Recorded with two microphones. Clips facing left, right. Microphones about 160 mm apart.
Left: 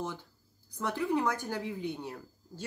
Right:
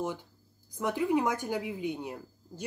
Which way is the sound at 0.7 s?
15° right (ahead or behind).